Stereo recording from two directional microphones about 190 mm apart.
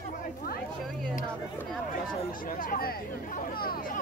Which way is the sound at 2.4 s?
45° left (ahead or behind).